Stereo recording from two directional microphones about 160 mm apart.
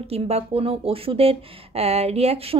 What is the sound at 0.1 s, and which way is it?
Speech, 40° right (ahead or behind).